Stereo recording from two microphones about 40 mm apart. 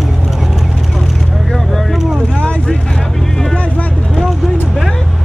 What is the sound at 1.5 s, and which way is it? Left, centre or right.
Vehicle, centre.